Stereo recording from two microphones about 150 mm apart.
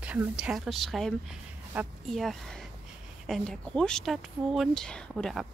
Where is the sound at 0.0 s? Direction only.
5° right (ahead or behind).